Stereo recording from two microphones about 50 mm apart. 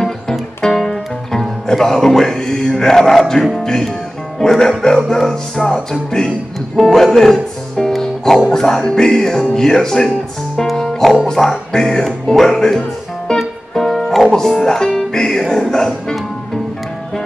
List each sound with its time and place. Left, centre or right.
0.0 s music: centre
1.7 s speech: centre
13.3 s music: centre
14.3 s speech: centre